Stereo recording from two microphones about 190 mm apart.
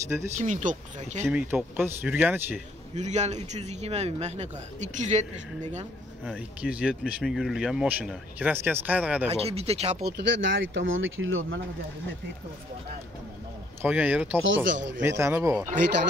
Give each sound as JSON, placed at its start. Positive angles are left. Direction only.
{"t": 0.4, "sound": "a man's voice", "side_deg": -40}
{"t": 1.2, "sound": "speech", "side_deg": -10}
{"t": 2.9, "sound": "a man's voice", "side_deg": -35}
{"t": 6.2, "sound": "speech", "side_deg": -5}
{"t": 9.3, "sound": "a man's voice", "side_deg": -30}
{"t": 10.0, "sound": "speech", "side_deg": -70}
{"t": 13.8, "sound": "speech", "side_deg": -10}
{"t": 14.4, "sound": "speech", "side_deg": -90}
{"t": 15.0, "sound": "speech", "side_deg": -15}